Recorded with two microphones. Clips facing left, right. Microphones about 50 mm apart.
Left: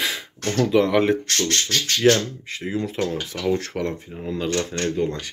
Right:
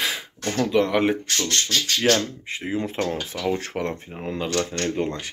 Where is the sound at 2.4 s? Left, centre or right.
Right.